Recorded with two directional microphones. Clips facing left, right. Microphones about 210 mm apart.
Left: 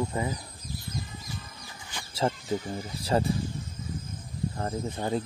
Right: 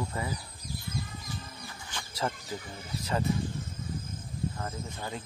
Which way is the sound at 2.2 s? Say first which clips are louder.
Left 5 dB; 30° left (ahead or behind).